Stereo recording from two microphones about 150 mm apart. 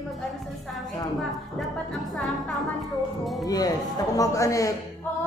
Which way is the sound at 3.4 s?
25° left (ahead or behind).